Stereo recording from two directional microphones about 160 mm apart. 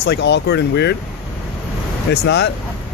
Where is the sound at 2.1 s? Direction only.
90° left.